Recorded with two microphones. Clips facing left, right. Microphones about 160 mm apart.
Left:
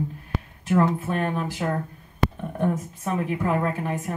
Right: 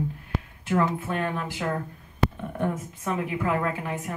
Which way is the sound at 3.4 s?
35° left (ahead or behind).